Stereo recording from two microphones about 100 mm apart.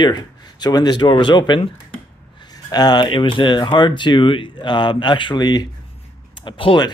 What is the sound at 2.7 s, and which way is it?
Speech, 45° left (ahead or behind).